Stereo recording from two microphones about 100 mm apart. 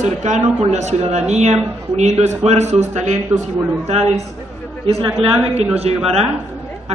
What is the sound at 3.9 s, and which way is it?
Speech, 90° right.